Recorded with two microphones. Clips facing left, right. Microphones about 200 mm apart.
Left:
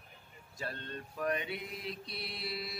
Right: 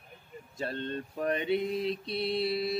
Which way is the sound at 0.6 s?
25° right (ahead or behind).